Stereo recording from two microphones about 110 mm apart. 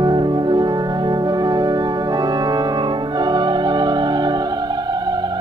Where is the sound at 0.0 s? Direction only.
40° right (ahead or behind).